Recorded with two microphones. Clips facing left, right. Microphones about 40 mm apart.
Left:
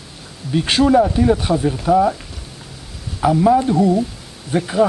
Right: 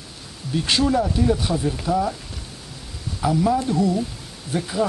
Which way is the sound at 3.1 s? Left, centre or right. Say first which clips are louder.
Left 6 dB; left.